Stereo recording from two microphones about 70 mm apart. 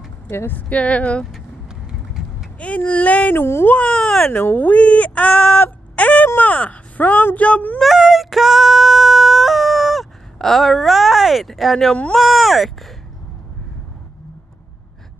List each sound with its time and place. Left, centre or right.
0.3 s speech: left
2.2 s vehicle: centre
2.6 s speech: centre
3.3 s speech: left
3.7 s speech: centre
4.3 s speech: left
5.9 s a sound: centre
6.2 s speech: left
7.8 s female singing: centre
12.2 s speech: centre